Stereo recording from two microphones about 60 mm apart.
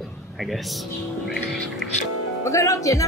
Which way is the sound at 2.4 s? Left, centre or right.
Left.